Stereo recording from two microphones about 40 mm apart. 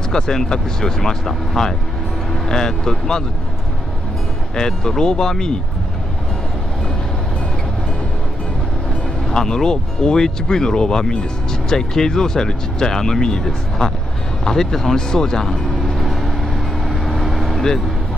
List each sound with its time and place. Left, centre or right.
0.1 s speech: centre
4.6 s speech: centre
9.3 s speech: centre
16.8 s vehicle: centre